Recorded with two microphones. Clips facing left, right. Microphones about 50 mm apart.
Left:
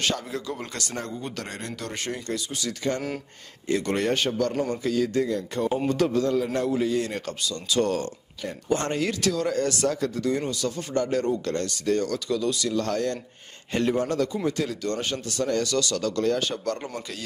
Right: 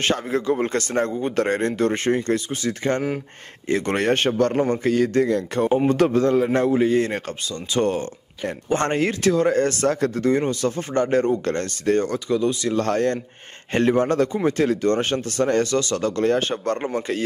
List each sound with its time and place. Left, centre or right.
0.0 s a man's voice: right
5.7 s speech: right